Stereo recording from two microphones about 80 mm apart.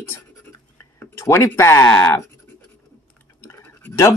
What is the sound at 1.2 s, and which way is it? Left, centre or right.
Speech, left.